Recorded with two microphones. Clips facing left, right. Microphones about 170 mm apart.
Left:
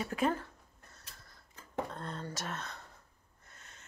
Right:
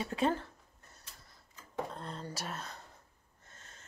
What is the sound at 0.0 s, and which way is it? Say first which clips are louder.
Speech: even; 30° right (ahead or behind).